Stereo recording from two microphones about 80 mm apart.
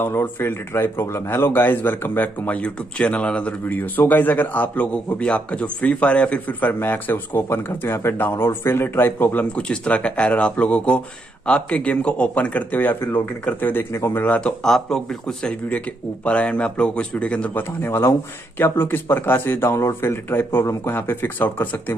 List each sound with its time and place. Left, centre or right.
0.0 s a man's voice: left
14.6 s speech: centre
17.6 s a man's voice: left